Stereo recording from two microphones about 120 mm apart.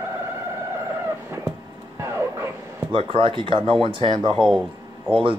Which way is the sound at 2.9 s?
50° right (ahead or behind).